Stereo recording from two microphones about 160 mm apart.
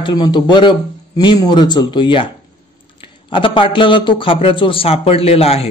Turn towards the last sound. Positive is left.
turn(degrees=40)  # may be behind; listen again after turning